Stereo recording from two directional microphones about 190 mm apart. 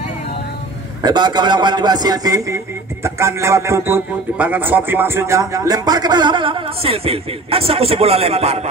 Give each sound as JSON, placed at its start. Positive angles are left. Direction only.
{"t": 1.0, "sound": "a man's voice", "side_deg": -25}